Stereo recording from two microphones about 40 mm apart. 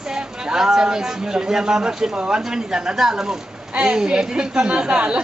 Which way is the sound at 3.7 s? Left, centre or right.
Right.